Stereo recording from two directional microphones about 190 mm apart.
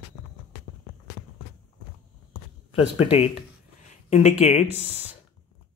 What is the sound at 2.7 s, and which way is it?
Speech, 30° left (ahead or behind).